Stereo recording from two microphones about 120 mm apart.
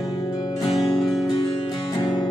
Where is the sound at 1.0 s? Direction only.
Centre (ahead or behind).